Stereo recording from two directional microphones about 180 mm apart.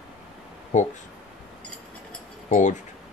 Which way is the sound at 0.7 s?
45° left (ahead or behind).